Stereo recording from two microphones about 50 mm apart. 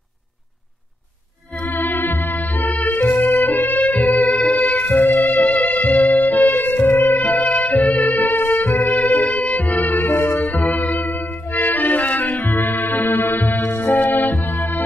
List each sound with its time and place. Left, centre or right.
1.6 s music: left
4.9 s music: left
5.4 s music: left
8.4 s music: left
8.8 s music: left
10.0 s music: left
10.6 s music: left
12.4 s music: left